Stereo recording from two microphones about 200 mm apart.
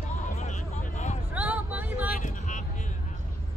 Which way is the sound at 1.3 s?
5° right (ahead or behind).